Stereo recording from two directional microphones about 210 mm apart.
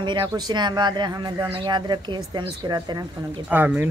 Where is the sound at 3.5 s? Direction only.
10° right (ahead or behind).